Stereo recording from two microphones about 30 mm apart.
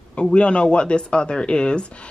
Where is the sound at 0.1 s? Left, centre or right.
Left.